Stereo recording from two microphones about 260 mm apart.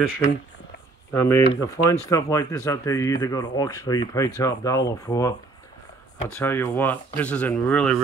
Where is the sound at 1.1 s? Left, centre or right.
Centre.